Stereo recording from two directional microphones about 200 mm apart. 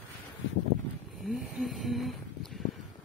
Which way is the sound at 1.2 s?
Centre (ahead or behind).